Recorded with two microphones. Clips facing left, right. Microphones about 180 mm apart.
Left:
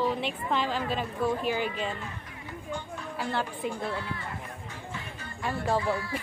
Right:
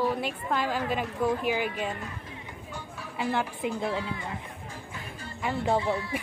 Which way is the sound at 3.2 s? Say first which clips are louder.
Right 3 dB; 15° right (ahead or behind).